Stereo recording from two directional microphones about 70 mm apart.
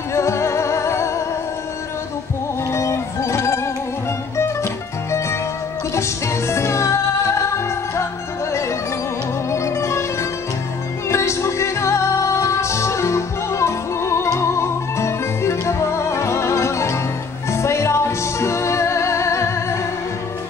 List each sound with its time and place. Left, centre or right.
0.1 s music: left
2.7 s music: left
5.9 s music: left
9.5 s music: left
11.1 s music: left